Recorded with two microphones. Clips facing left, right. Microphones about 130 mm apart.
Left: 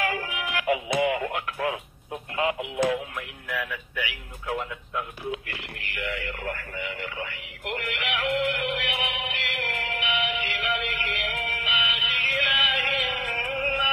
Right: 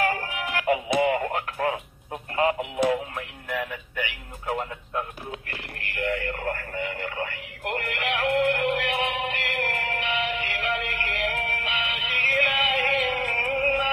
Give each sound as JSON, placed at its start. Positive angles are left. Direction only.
{"t": 0.0, "sound": "radio", "side_deg": -40}
{"t": 2.3, "sound": "speech", "side_deg": -40}
{"t": 2.8, "sound": "music", "side_deg": -35}